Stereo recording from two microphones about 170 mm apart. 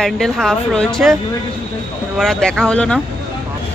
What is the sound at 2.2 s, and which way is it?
Speech, 5° left (ahead or behind).